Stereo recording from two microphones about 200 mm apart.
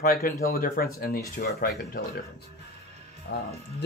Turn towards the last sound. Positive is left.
turn(degrees=55)  # may be behind; listen again after turning